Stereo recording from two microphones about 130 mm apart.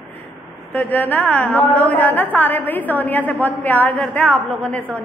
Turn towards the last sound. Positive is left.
turn(degrees=10)  # may be behind; listen again after turning